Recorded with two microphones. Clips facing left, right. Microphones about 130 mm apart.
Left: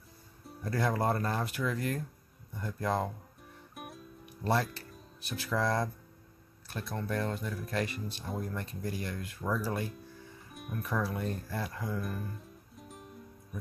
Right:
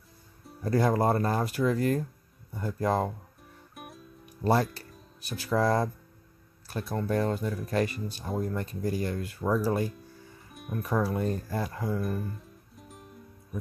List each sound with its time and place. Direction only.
0.7 s speech: 35° right (ahead or behind)
3.7 s music: centre (ahead or behind)
4.4 s speech: 35° right (ahead or behind)
4.6 s music: centre (ahead or behind)
5.5 s speech: 35° right (ahead or behind)
7.2 s speech: 40° right (ahead or behind)
10.5 s music: centre (ahead or behind)
10.8 s speech: 40° right (ahead or behind)
12.0 s music: centre (ahead or behind)